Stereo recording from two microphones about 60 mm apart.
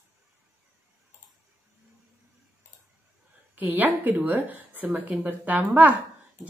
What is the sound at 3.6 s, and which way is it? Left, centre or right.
A woman's voice, right.